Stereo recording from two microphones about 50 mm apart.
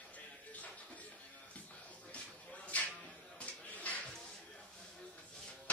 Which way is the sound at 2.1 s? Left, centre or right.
Left.